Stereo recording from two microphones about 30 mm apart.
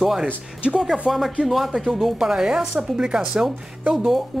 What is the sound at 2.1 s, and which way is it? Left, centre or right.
Speech, centre.